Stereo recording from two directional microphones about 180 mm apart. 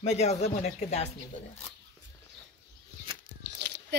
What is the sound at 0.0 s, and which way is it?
Speech, 40° left (ahead or behind).